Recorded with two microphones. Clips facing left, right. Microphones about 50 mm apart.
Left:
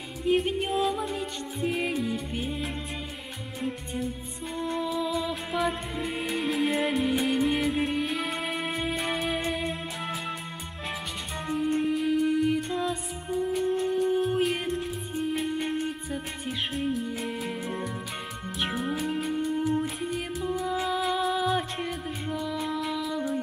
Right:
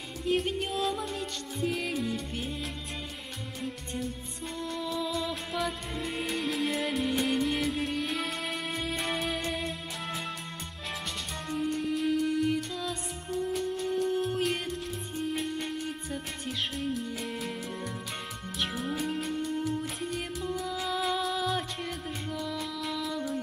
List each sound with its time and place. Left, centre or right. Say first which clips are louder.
0.2 s music: left 4 dB; centre
4.6 s music: left 5 dB; centre
11.4 s music: left 5 dB; centre
18.6 s music: left 3 dB; centre